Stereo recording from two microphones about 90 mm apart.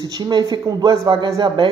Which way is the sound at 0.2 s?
55° right (ahead or behind).